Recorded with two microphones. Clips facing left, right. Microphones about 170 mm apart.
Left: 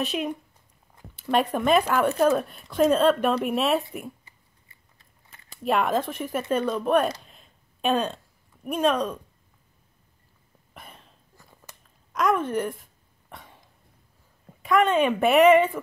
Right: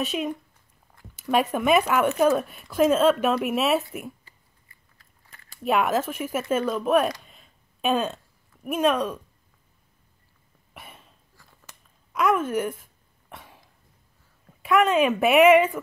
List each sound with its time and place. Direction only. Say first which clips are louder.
0.0 s speech: even; centre (ahead or behind)
4.6 s biting: left 1 dB; 25° left (ahead or behind)
5.6 s speech: right 1 dB; 5° right (ahead or behind)
10.7 s cough: even; 5° right (ahead or behind)
12.1 s a sound: right 1 dB; 5° right (ahead or behind)
14.6 s speech: right 1 dB; 5° right (ahead or behind)